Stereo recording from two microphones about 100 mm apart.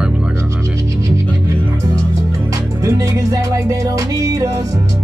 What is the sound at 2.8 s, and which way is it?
Music, 35° right (ahead or behind).